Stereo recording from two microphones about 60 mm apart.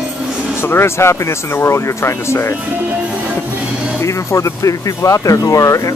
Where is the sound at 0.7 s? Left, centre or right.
Left.